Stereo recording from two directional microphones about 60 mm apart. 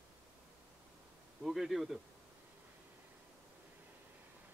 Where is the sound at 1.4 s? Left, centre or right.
Centre.